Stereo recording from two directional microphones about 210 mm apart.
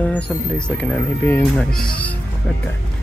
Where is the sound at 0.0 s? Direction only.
5° left (ahead or behind).